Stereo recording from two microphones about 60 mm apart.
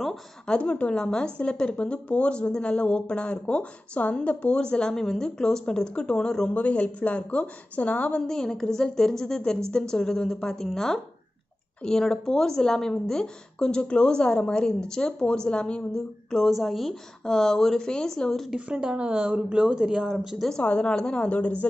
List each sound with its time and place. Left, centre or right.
0.5 s a woman's voice: left
8.2 s a woman's voice: centre
16.4 s a woman's voice: centre
18.7 s speech: centre
20.4 s a woman's voice: centre